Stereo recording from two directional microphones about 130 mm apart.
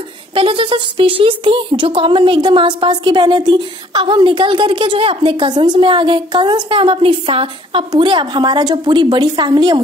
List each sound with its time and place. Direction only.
0.3 s speech: 45° right (ahead or behind)